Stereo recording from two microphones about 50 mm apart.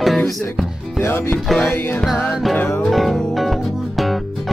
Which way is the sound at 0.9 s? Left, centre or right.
Left.